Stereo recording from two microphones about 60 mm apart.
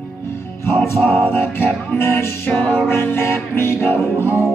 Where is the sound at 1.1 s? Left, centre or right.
Left.